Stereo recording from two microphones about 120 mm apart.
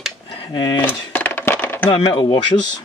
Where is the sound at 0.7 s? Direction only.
15° left (ahead or behind).